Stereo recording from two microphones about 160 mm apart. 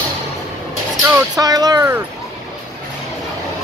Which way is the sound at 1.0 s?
20° right (ahead or behind).